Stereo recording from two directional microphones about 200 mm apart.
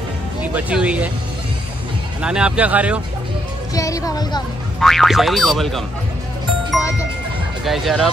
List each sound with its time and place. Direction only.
0.4 s speech: 5° right (ahead or behind)
2.2 s speech: 5° right (ahead or behind)
3.7 s speech: 15° left (ahead or behind)
4.7 s speech: centre (ahead or behind)
7.6 s speech: centre (ahead or behind)